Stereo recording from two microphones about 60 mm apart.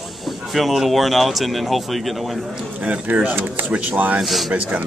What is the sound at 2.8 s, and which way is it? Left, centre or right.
Speech, right.